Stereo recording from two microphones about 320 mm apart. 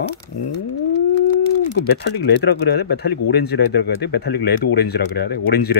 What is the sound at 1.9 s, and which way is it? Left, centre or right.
Speech, left.